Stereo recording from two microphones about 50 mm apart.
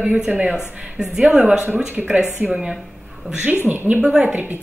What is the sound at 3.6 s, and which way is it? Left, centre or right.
Speech, right.